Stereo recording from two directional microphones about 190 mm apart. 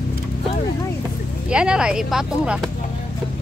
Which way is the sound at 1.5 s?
5° right (ahead or behind).